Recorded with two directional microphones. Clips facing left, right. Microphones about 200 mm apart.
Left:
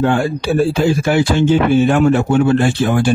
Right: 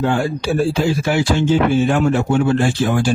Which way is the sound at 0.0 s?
60° left (ahead or behind).